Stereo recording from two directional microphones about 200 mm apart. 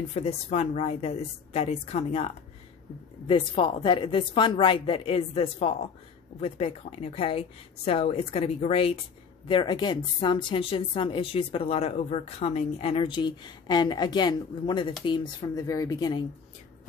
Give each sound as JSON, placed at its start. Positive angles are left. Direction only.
{"t": 0.1, "sound": "a woman's voice", "side_deg": 35}